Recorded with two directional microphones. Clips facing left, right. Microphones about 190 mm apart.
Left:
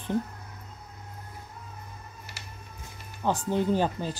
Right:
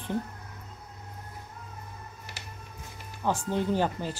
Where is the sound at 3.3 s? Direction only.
15° left (ahead or behind).